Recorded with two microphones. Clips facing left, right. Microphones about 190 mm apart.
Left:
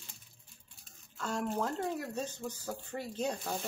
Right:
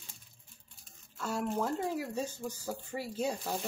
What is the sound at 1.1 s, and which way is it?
Speech, 5° right (ahead or behind).